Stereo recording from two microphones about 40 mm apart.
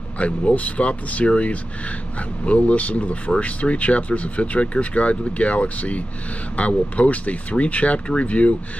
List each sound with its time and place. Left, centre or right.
0.2 s speech: left